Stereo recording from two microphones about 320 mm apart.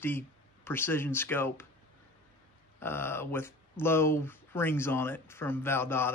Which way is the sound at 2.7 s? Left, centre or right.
Centre.